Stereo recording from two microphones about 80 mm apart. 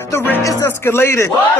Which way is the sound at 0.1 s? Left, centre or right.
Left.